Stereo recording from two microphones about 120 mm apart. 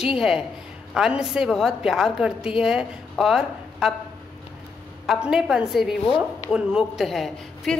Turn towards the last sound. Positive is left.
turn(degrees=0)  # may be behind; listen again after turning